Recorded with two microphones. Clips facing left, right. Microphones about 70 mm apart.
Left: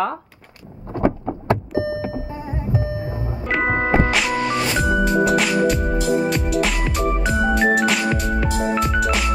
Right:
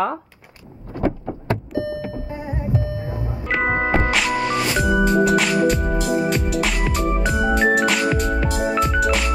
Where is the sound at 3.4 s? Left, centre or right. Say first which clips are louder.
Even; centre.